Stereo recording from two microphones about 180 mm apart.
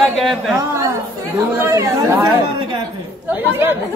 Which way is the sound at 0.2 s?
Centre (ahead or behind).